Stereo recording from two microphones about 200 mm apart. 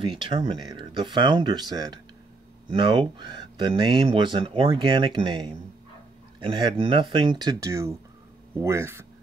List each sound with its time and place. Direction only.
0.0 s speech: 25° right (ahead or behind)